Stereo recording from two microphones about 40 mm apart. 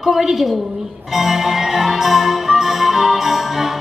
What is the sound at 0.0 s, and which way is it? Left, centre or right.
Speech, centre.